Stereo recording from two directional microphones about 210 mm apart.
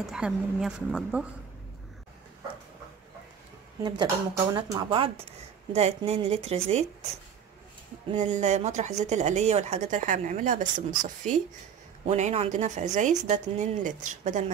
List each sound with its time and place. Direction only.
0.0 s a woman's voice: centre (ahead or behind)
3.8 s a woman's voice: 20° right (ahead or behind)
8.1 s a woman's voice: 35° right (ahead or behind)